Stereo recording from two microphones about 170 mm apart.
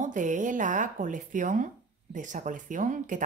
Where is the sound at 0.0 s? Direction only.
50° right (ahead or behind).